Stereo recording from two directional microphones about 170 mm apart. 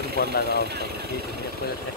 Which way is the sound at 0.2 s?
65° left (ahead or behind).